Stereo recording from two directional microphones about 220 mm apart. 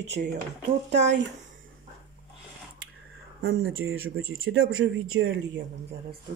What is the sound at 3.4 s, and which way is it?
Speech, 65° right (ahead or behind).